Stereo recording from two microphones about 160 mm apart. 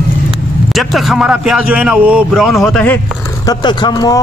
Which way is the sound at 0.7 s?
Centre (ahead or behind).